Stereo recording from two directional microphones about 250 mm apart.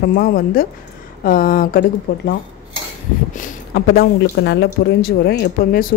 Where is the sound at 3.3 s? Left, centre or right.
Left.